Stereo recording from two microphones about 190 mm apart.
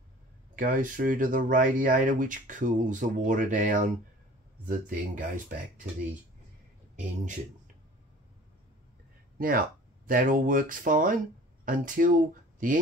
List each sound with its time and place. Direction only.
0.6 s speech: 45° right (ahead or behind)
9.4 s speech: 50° right (ahead or behind)